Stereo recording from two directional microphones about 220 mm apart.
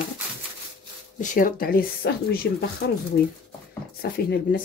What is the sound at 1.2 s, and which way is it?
Speech, 35° left (ahead or behind).